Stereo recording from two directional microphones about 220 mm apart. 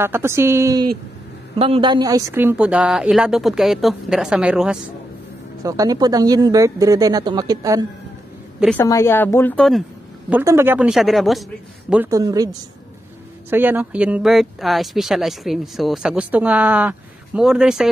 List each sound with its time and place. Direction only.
0.0 s speech: 10° right (ahead or behind)
1.6 s speech: 25° right (ahead or behind); by 4.7 s 5° right (ahead or behind)
5.6 s speech: 15° right (ahead or behind)
8.5 s a woman's voice: 5° left (ahead or behind)
10.3 s speech: 10° right (ahead or behind)
11.9 s speech: 10° right (ahead or behind)
13.5 s speech: 10° right (ahead or behind)